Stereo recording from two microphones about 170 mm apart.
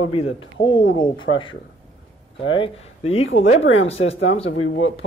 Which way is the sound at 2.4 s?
30° left (ahead or behind).